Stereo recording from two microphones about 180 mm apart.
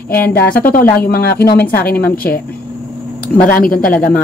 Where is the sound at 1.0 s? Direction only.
60° left (ahead or behind).